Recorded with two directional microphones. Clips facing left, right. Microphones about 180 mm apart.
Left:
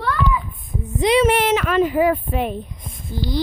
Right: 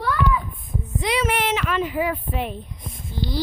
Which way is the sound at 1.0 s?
25° left (ahead or behind).